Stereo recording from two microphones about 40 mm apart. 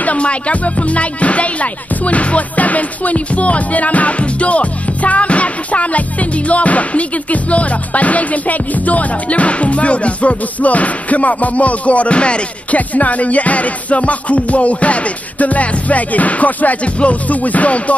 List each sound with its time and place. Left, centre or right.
0.0 s speech: left